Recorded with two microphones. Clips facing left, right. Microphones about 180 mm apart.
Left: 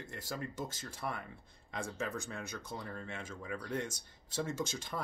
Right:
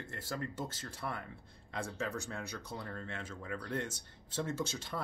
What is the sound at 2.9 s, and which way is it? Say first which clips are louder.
Speech: even; 10° left (ahead or behind).